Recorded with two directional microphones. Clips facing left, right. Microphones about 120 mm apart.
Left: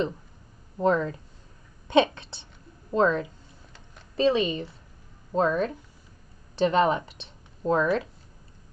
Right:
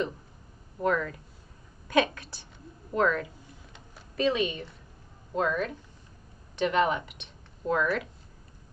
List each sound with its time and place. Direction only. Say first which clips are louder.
0.7 s a woman's voice: left 4 dB; 25° left (ahead or behind)